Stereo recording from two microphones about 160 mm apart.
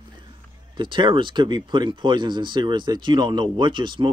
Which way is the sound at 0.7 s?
30° right (ahead or behind).